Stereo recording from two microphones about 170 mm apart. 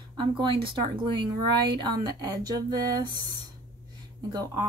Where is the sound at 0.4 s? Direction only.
30° right (ahead or behind).